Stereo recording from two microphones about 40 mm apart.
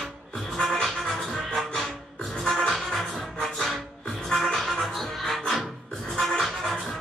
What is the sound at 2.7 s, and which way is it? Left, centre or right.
Music, centre.